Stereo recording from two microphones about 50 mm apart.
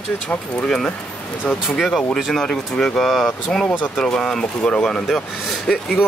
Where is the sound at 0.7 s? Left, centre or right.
Centre.